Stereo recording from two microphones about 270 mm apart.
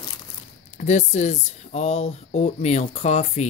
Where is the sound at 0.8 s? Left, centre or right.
Left.